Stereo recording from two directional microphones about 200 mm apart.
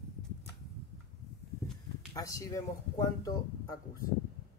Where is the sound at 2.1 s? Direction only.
15° left (ahead or behind).